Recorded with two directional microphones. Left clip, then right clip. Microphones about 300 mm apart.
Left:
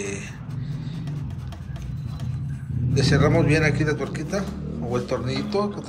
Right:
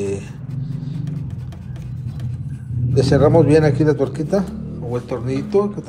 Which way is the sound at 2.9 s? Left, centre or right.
Centre.